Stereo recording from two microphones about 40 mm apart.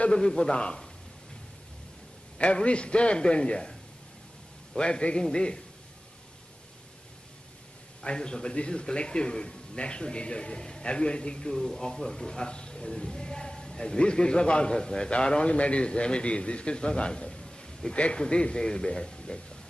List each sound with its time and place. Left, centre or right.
0.2 s a man's voice: centre
2.3 s a man's voice: left
4.7 s a man's voice: left
8.0 s a man's voice: left
11.5 s a man's voice: centre
17.9 s a man's voice: left